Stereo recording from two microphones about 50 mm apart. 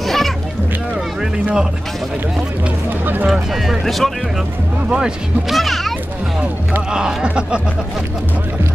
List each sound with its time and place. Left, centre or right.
0.0 s music: centre
3.3 s speech: centre
4.9 s speech: centre
5.6 s speech: centre
6.9 s speech: centre